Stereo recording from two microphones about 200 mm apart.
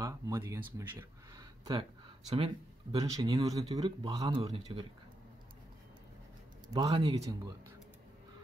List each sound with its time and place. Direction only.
0.0 s speech: 15° right (ahead or behind)
1.8 s speech: 30° right (ahead or behind)
6.7 s speech: 25° right (ahead or behind)